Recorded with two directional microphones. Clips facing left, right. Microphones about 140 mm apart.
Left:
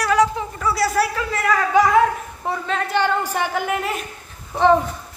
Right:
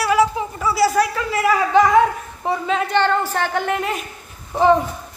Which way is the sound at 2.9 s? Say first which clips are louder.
Right 1 dB; 10° left (ahead or behind).